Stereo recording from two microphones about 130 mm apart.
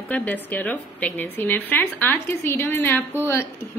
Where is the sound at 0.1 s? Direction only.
10° left (ahead or behind).